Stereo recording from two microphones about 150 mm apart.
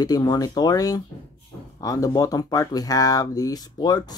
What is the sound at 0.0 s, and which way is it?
Speech, 25° left (ahead or behind).